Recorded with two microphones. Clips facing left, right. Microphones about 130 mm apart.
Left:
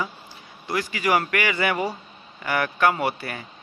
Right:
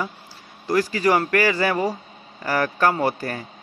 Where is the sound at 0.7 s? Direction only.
40° right (ahead or behind).